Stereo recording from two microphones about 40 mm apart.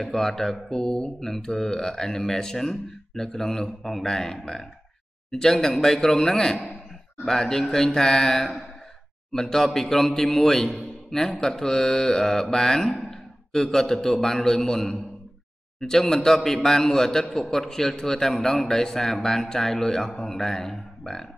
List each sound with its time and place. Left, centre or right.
0.0 s a man's voice: centre